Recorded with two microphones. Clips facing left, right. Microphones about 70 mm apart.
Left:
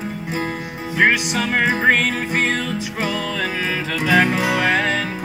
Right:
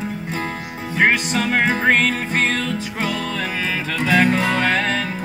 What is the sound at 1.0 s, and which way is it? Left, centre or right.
Music, centre.